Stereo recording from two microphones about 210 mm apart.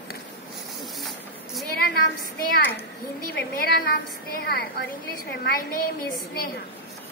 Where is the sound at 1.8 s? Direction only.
45° left (ahead or behind).